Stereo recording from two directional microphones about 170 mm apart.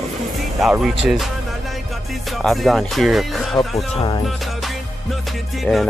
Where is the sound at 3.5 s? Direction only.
30° left (ahead or behind).